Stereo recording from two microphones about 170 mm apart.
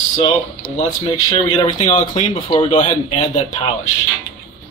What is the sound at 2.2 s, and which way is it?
Speech, 35° left (ahead or behind).